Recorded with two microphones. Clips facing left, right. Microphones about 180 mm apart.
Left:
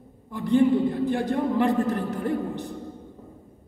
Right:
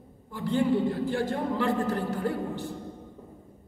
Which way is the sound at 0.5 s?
15° left (ahead or behind).